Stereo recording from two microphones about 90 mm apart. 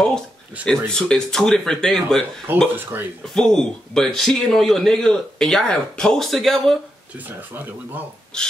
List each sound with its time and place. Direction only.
0.7 s speech: 10° left (ahead or behind)
2.7 s speech: 25° right (ahead or behind)
3.3 s a man's voice: 5° left (ahead or behind)
7.2 s speech: 20° right (ahead or behind)
8.3 s speech: 10° left (ahead or behind)